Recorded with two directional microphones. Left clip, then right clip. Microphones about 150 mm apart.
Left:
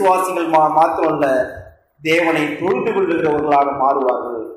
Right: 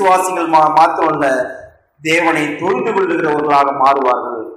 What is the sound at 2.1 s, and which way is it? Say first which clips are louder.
A man's voice: right 2 dB; 15° right (ahead or behind).